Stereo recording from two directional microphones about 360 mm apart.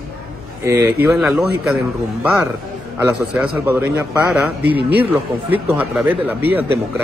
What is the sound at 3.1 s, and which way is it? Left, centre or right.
A man's voice, centre.